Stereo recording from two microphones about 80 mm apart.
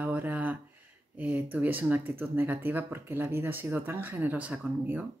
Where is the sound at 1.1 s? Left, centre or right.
Right.